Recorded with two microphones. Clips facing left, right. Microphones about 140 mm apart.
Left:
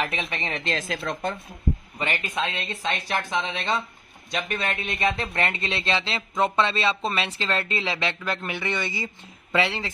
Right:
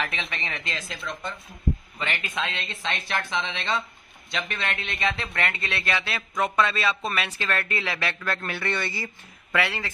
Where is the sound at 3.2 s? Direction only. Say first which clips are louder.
Left 2 dB; 45° left (ahead or behind).